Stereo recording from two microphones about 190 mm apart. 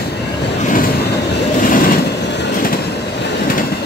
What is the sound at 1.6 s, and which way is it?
Vehicle, 45° left (ahead or behind).